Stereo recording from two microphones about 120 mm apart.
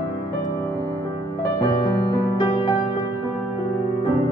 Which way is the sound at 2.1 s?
30° left (ahead or behind).